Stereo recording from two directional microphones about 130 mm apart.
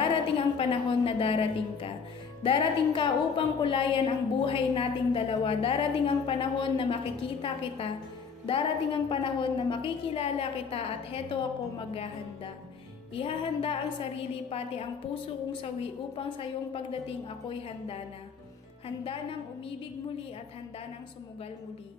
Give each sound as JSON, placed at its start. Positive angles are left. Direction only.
{"t": 0.0, "sound": "a woman's voice", "side_deg": 45}
{"t": 13.1, "sound": "a woman's voice", "side_deg": 45}
{"t": 15.6, "sound": "a woman's voice", "side_deg": 45}